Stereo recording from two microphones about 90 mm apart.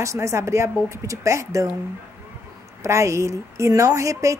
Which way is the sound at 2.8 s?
35° right (ahead or behind).